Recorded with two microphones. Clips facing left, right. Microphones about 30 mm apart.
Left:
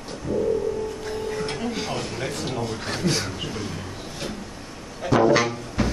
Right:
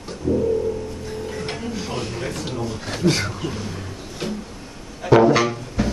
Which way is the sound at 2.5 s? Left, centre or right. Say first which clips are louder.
Even; left.